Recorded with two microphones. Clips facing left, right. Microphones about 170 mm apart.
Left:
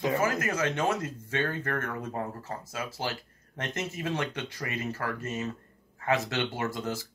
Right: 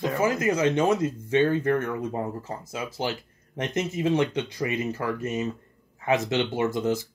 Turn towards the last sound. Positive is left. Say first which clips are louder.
# right 8 dB
turn(degrees=-20)  # may be behind; listen again after turning